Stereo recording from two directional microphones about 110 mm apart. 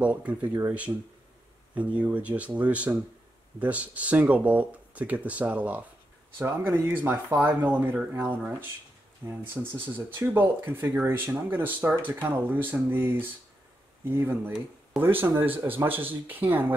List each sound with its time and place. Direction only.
0.0 s speech: 10° right (ahead or behind)